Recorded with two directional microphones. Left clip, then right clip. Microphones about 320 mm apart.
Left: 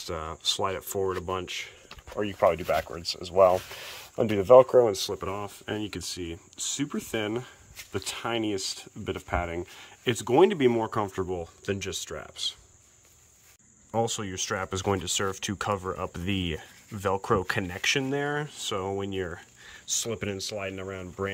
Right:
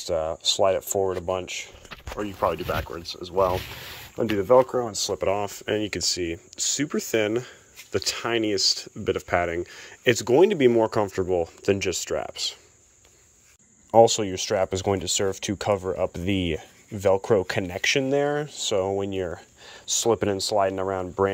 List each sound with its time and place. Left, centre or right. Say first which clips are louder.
0.0 s speech: right 6 dB; centre
2.4 s speech: left 2 dB; left
4.9 s speech: right 7 dB; centre
13.9 s speech: right 12 dB; centre